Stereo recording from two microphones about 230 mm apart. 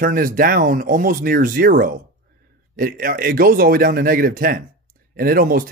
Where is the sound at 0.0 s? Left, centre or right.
Right.